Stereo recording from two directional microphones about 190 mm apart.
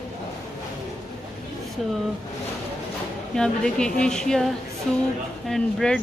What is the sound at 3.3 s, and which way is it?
Speech, 5° left (ahead or behind).